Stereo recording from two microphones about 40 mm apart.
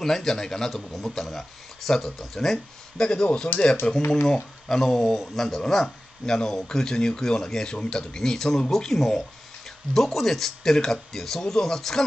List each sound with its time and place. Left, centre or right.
0.0 s speech: centre